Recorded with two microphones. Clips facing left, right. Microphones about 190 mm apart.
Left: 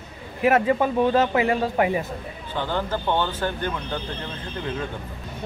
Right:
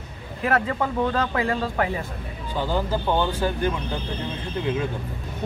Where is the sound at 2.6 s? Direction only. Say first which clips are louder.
Right 1 dB; 10° right (ahead or behind).